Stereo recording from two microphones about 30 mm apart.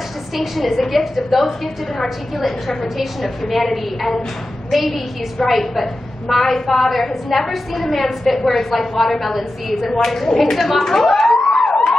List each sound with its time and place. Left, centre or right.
0.4 s a woman's voice: centre
11.5 s police car: left